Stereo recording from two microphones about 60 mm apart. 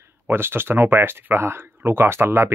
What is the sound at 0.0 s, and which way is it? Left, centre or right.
Speech, right.